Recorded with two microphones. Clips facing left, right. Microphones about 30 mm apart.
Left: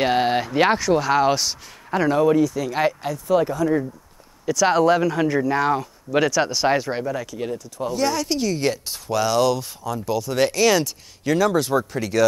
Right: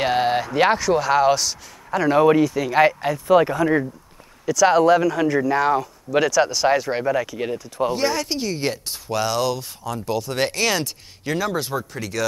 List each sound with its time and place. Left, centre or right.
0.0 s speech: centre
2.1 s speech: right
2.5 s speech: right
3.3 s speech: right
4.5 s speech: centre
6.3 s speech: centre
7.3 s speech: right
8.1 s speech: right
8.8 s speech: centre
10.0 s speech: right; by 11.7 s centre
11.7 s speech: centre